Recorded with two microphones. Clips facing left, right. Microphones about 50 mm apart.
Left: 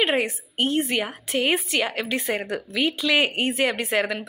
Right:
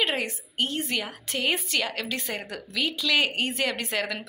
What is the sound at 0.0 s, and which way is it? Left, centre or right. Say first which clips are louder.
A woman's voice: left 5 dB; left.